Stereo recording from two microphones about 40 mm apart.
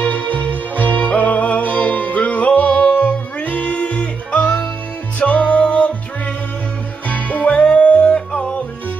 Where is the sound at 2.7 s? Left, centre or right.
Left.